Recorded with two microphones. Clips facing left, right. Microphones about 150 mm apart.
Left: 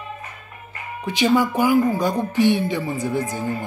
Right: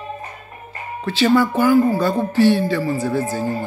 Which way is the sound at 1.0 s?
15° left (ahead or behind).